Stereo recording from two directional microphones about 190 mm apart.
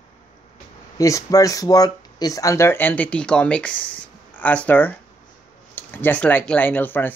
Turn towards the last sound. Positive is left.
turn(degrees=10)  # may be behind; listen again after turning